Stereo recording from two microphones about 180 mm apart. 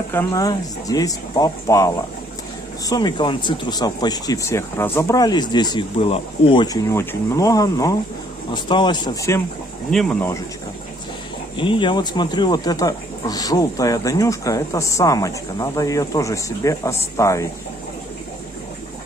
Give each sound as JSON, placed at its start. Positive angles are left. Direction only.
{"t": 0.1, "sound": "speech", "side_deg": 15}
{"t": 2.9, "sound": "speech", "side_deg": 25}
{"t": 9.8, "sound": "speech", "side_deg": 0}
{"t": 11.5, "sound": "speech", "side_deg": 25}